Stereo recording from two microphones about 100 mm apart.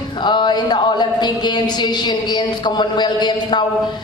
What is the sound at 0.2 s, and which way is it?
Speech, 50° left (ahead or behind).